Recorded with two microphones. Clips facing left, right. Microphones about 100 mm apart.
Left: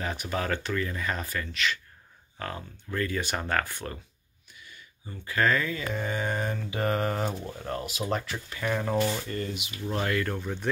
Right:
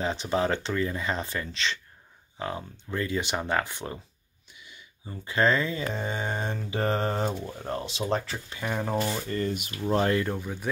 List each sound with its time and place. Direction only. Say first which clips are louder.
0.0 s speech: right 5 dB; 25° right (ahead or behind)
9.3 s speech: right 4 dB; 45° right (ahead or behind)
9.9 s speech: right 4 dB; 30° right (ahead or behind)
10.2 s speech: even; 10° right (ahead or behind)